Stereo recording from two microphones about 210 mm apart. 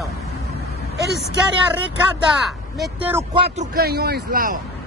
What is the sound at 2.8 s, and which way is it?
Speech, 10° right (ahead or behind).